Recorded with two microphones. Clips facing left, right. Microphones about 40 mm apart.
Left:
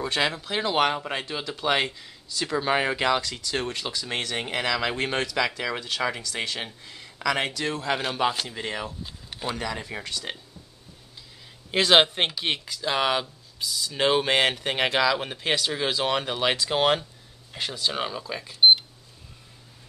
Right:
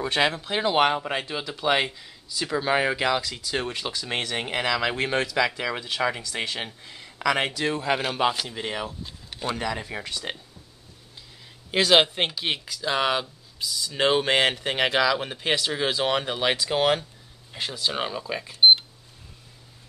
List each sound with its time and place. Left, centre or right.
0.4 s speech: centre
3.3 s speech: centre
9.0 s a sound: centre
9.6 s speech: centre
10.0 s speech: centre
11.8 s speech: centre
18.2 s cash register: centre